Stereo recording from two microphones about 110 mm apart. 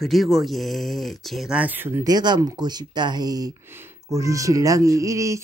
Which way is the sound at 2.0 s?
40° right (ahead or behind).